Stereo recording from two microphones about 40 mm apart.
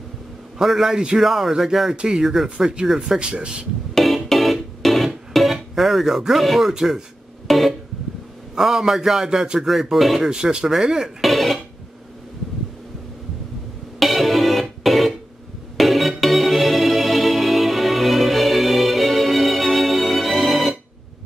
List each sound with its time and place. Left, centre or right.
0.6 s a man's voice: centre
2.2 s a man's voice: centre
2.5 s a man's voice: centre
3.9 s music: centre
6.7 s a man's voice: centre
7.4 s music: centre
8.5 s a man's voice: centre
11.1 s music: centre
13.9 s music: centre